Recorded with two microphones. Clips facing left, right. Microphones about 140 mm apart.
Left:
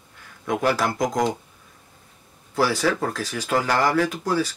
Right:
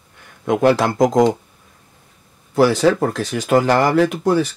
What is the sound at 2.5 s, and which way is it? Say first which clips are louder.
Speech: right 8 dB; 20° right (ahead or behind).